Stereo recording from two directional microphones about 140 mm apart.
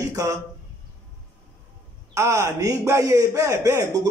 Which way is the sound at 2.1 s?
20° right (ahead or behind).